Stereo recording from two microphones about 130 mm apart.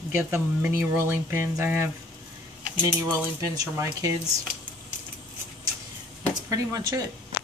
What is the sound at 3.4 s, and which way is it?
Speech, 25° right (ahead or behind).